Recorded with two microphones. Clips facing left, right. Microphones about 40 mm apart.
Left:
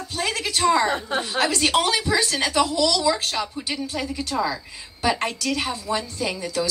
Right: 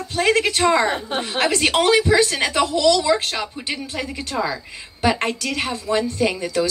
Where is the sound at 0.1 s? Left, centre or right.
Right.